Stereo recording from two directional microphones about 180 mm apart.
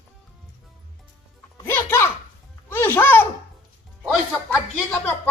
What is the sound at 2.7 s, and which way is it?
Music, 15° left (ahead or behind).